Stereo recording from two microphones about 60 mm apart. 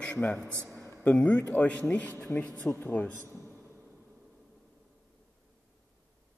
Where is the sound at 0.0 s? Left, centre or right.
Left.